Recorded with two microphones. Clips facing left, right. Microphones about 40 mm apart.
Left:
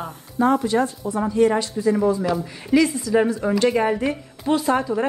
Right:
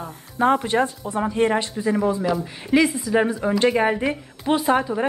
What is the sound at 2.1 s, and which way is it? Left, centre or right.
A woman's voice, centre.